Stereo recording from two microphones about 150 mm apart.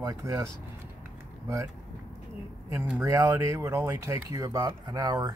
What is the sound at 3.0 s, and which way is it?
Speech, 20° right (ahead or behind).